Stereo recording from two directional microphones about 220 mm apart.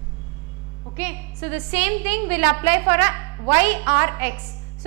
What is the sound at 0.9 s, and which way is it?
A woman's voice, 10° right (ahead or behind).